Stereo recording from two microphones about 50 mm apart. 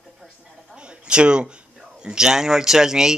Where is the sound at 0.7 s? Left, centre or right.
Centre.